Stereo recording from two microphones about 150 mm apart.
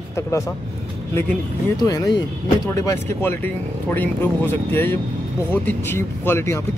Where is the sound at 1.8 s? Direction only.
25° left (ahead or behind).